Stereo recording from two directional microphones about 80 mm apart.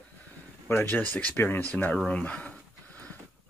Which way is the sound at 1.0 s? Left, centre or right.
Centre.